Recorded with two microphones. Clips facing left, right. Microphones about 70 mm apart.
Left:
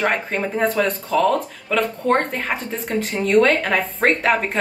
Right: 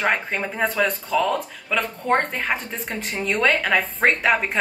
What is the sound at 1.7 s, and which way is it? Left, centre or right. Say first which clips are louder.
A woman's voice: left 3 dB; centre.